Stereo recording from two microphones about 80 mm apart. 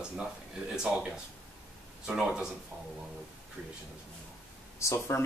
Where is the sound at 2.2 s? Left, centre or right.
Centre.